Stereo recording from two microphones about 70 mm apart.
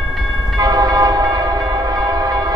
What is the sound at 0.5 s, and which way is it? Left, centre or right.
Train, right.